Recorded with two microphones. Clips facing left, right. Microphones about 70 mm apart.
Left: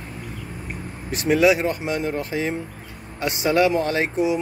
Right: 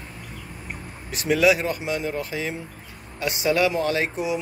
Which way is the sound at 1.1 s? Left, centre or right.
Left.